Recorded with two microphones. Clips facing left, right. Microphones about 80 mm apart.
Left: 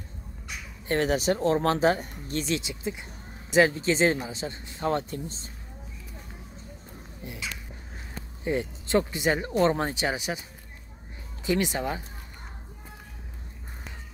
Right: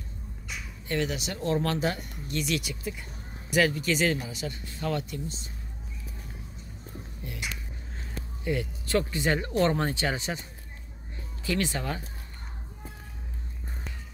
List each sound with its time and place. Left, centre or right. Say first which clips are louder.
0.8 s speech: left 6 dB; left
7.2 s speech: left 1 dB; left
8.5 s speech: left 2 dB; left
11.4 s speech: left 3 dB; centre